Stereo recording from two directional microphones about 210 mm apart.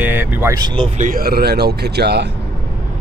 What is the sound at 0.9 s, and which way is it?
Speech, 40° right (ahead or behind).